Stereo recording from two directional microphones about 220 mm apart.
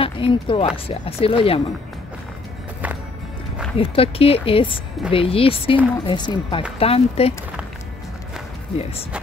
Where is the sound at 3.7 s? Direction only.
25° left (ahead or behind).